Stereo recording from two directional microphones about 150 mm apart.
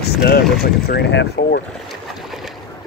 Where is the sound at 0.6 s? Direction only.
90° left.